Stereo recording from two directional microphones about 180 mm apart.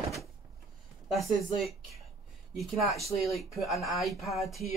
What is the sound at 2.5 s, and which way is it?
Speech, centre (ahead or behind).